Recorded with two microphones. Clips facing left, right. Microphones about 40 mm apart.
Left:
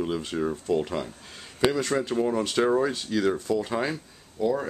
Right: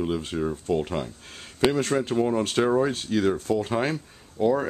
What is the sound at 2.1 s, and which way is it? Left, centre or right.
Speech, centre.